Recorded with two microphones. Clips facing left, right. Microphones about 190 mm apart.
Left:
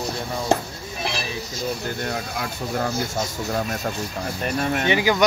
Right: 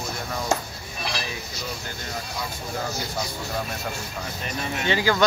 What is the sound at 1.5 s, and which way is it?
Speech, 60° left (ahead or behind).